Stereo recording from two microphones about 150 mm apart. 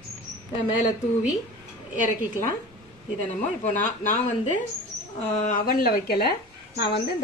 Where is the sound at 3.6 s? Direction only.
55° left (ahead or behind).